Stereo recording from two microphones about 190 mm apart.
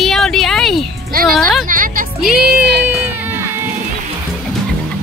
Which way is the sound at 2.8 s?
10° right (ahead or behind).